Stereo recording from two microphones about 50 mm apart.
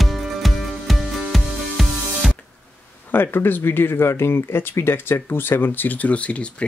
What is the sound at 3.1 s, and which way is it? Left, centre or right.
Speech, left.